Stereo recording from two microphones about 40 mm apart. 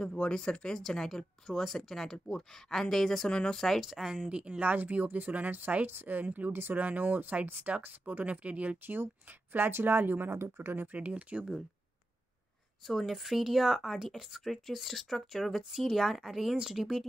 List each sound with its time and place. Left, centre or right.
0.2 s speech: centre
3.3 s speech: left
3.5 s speech: centre
3.8 s speech: centre
4.3 s speech: right
4.6 s speech: right
5.9 s speech: right
7.7 s speech: right
8.0 s speech: right
8.8 s speech: right
10.8 s speech: right
12.8 s speech: centre